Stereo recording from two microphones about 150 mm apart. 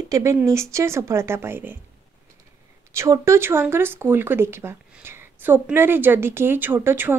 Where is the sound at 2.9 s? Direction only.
20° right (ahead or behind).